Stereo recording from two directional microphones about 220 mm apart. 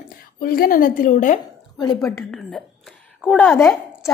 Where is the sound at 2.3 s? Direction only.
Centre (ahead or behind).